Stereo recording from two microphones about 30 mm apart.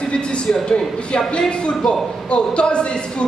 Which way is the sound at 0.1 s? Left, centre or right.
Left.